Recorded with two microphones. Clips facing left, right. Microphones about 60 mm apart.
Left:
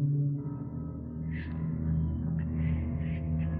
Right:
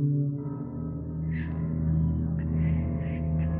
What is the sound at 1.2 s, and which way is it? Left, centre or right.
Gong, centre.